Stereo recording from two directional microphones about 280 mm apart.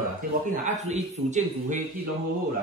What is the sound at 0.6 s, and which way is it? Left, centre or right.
A man's voice, right.